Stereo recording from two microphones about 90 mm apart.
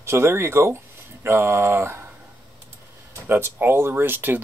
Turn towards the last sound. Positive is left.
turn(degrees=-25)  # may be behind; listen again after turning